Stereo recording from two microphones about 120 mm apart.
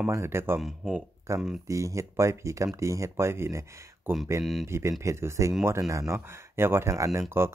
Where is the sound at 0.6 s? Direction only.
5° right (ahead or behind).